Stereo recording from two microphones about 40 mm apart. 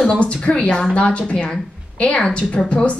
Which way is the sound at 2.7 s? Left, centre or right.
Left.